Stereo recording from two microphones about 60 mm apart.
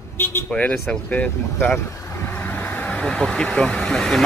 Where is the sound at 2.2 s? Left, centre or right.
Left.